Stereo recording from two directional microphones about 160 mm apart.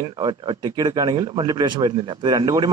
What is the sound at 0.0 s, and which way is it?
Speech, 30° right (ahead or behind).